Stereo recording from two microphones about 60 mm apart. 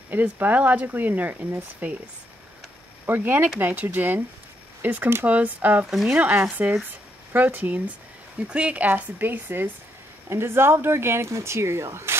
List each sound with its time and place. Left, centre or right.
0.1 s speech: right
3.1 s speech: right